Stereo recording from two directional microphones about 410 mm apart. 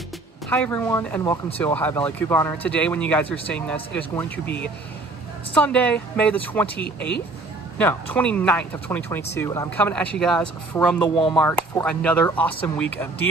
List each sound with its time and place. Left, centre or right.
0.5 s speech: centre
7.0 s speech: left
7.7 s speech: centre